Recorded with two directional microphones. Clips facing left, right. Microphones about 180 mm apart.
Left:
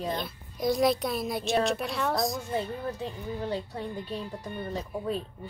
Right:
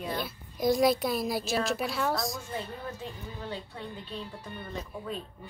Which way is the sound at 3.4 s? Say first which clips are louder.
Left 5 dB; 40° left (ahead or behind).